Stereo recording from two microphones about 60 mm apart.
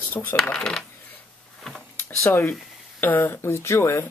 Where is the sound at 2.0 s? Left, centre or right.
Left.